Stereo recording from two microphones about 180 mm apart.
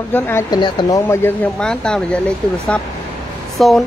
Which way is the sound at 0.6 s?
25° left (ahead or behind).